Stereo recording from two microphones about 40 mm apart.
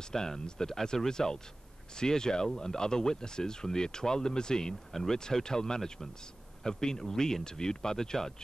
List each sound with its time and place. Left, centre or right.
0.1 s speech: centre